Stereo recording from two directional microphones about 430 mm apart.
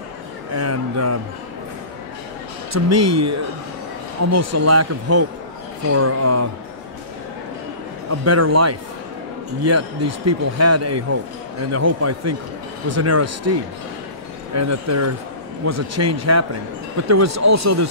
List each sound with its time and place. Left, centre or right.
0.6 s speech: right
2.7 s speech: right
8.1 s speech: right